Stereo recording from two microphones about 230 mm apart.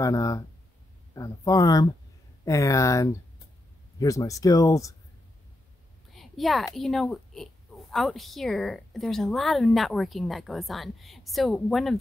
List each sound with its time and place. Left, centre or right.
0.0 s speech: centre
6.1 s speech: centre